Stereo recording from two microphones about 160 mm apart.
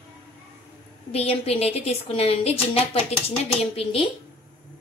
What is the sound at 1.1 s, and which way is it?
A woman's voice, 40° left (ahead or behind).